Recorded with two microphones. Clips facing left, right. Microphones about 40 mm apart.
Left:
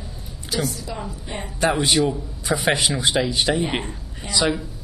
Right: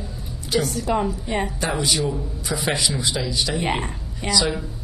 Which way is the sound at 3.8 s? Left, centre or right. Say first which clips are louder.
Right 4 dB; right.